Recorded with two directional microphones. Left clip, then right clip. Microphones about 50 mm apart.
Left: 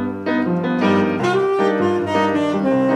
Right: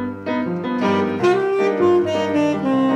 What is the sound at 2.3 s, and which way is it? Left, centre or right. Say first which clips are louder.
Saxophone: left 1 dB; right.